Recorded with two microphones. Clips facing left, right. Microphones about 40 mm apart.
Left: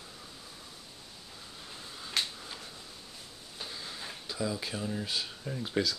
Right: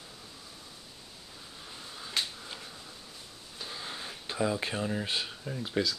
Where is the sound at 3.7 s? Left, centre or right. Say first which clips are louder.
Right 4 dB; right.